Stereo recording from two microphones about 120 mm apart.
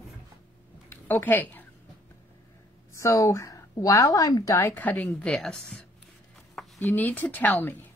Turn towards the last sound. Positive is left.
turn(degrees=15)  # may be behind; listen again after turning